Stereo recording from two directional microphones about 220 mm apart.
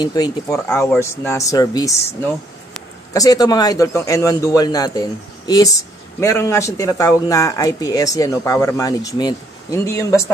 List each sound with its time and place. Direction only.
0.0 s a man's voice: 20° left (ahead or behind)
3.1 s a man's voice: 15° left (ahead or behind)
6.1 s a man's voice: 10° left (ahead or behind)